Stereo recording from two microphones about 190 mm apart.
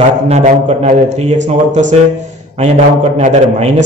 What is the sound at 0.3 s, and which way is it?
A man's voice, 35° right (ahead or behind).